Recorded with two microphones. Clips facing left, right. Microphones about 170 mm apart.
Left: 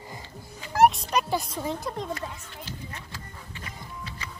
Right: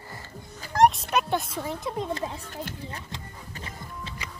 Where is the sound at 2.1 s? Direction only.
25° right (ahead or behind).